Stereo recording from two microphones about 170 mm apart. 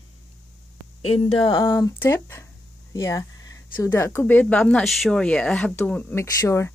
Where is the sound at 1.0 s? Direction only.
35° left (ahead or behind).